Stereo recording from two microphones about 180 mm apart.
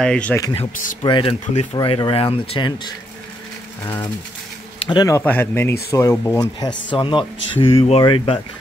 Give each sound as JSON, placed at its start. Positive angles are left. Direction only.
{"t": 0.0, "sound": "speech", "side_deg": 5}
{"t": 1.0, "sound": "speech", "side_deg": 30}
{"t": 3.8, "sound": "speech", "side_deg": 15}
{"t": 6.9, "sound": "speech", "side_deg": 25}